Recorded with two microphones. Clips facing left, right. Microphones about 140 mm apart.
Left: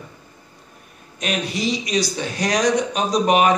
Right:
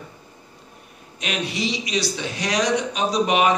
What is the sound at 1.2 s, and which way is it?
Speech, 45° left (ahead or behind).